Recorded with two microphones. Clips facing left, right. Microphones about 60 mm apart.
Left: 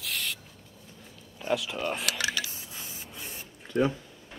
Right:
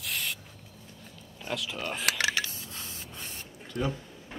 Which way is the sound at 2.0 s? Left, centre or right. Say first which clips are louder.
Right 2 dB; right.